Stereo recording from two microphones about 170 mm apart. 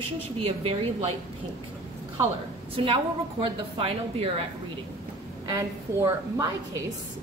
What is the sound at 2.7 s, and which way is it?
A woman's voice, 30° right (ahead or behind).